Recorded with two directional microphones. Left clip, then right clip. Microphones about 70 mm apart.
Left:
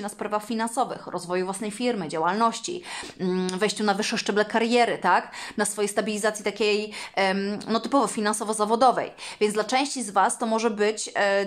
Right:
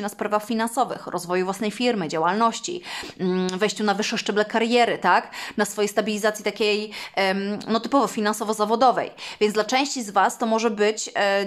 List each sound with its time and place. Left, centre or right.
0.0 s a woman's voice: right
1.1 s speech: right
2.2 s speech: right
4.1 s speech: centre
4.8 s speech: right
6.6 s speech: centre; by 11.4 s right